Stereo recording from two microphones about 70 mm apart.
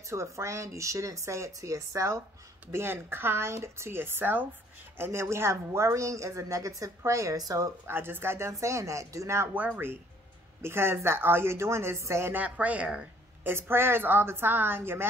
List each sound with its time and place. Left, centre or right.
0.1 s speech: right
2.7 s speech: right
7.8 s speech: right
9.5 s speech: right
12.4 s speech: right
13.4 s speech: right